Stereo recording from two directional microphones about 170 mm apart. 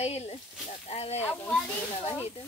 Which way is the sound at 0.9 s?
35° left (ahead or behind).